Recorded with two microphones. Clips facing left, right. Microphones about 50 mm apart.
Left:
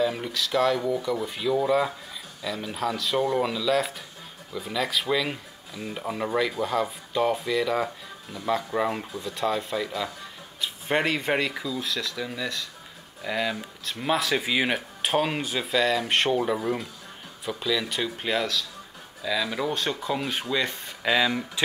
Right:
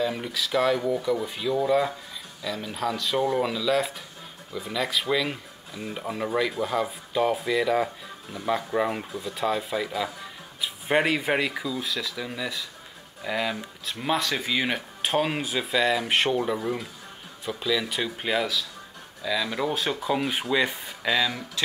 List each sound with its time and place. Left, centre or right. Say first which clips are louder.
0.0 s speech: left 1 dB; centre
21.0 s speech: left 2 dB; centre